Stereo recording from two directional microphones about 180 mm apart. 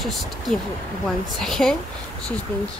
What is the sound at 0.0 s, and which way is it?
A woman's voice, centre (ahead or behind).